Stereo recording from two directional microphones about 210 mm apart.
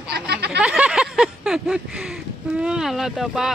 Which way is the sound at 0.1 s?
50° right (ahead or behind).